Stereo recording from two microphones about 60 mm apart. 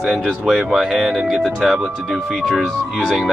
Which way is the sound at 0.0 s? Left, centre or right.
Centre.